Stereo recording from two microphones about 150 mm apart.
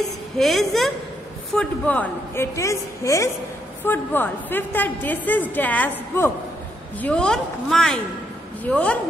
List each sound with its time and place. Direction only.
0.4 s a woman's voice: centre (ahead or behind)